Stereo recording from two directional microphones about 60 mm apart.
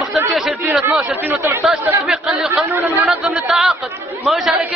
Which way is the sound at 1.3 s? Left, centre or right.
Right.